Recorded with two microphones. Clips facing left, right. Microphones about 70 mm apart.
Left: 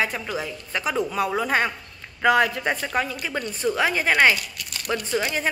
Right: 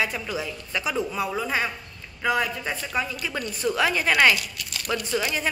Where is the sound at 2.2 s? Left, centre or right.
Left.